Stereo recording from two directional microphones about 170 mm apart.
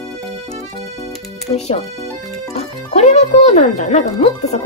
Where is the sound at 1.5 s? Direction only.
40° left (ahead or behind).